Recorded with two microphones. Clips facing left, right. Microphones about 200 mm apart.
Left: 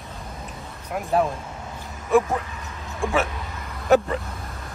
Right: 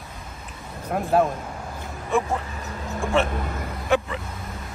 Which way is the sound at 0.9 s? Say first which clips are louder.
Right 3 dB; 50° right (ahead or behind).